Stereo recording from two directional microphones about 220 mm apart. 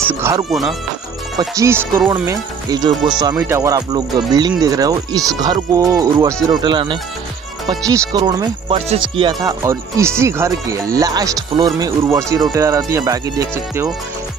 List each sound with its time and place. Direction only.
0.2 s speech: 15° right (ahead or behind)
0.5 s speech: centre (ahead or behind)
1.4 s speech: 15° right (ahead or behind)